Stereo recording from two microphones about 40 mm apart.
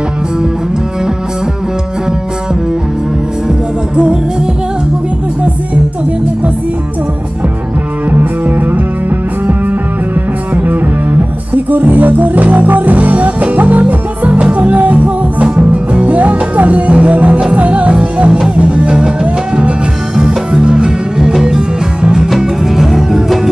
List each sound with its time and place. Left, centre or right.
3.4 s music: right
8.1 s music: right
10.5 s music: right
17.9 s music: right
20.2 s music: right